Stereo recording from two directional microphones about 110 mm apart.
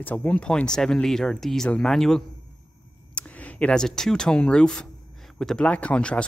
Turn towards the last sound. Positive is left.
turn(degrees=10)  # may be behind; listen again after turning